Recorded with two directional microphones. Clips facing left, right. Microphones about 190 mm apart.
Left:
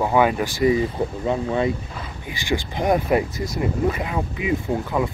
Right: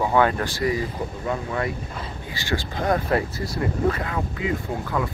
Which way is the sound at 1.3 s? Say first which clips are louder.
Left 5 dB; 20° left (ahead or behind).